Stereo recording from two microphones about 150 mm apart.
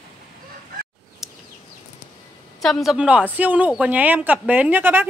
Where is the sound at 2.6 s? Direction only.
Centre (ahead or behind).